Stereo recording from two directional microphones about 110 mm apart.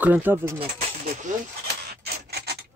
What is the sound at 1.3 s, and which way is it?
Speech, 90° right.